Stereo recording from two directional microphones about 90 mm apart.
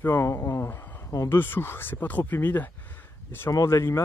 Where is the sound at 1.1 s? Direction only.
35° left (ahead or behind).